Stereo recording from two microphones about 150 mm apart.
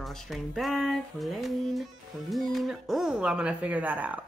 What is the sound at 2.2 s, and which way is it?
Speech, centre (ahead or behind).